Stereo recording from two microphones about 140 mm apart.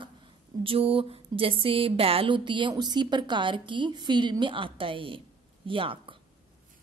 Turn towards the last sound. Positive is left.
turn(degrees=-40)  # may be behind; listen again after turning